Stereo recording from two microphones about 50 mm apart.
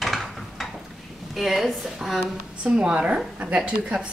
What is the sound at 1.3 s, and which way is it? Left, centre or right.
Speech, centre.